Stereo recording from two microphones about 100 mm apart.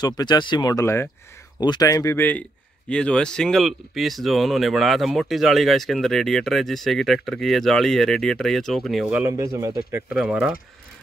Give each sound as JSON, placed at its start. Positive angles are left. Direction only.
{"t": 0.0, "sound": "speech", "side_deg": 45}
{"t": 1.6, "sound": "speech", "side_deg": 45}
{"t": 1.9, "sound": "speech", "side_deg": 30}
{"t": 2.9, "sound": "speech", "side_deg": 10}
{"t": 9.2, "sound": "speech", "side_deg": -30}
{"t": 10.0, "sound": "speech", "side_deg": -10}